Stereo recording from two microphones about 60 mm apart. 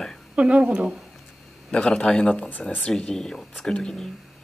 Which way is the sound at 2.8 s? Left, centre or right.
Centre.